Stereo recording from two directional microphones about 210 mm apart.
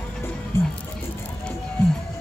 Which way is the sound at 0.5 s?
10° left (ahead or behind).